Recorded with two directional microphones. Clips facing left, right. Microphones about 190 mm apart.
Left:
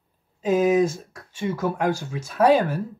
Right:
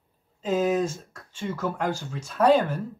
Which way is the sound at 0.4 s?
10° left (ahead or behind).